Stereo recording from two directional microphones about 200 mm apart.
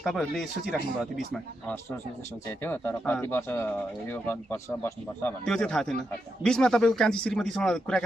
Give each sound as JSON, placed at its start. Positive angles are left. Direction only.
{"t": 0.0, "sound": "speech", "side_deg": 0}
{"t": 2.6, "sound": "speech", "side_deg": 10}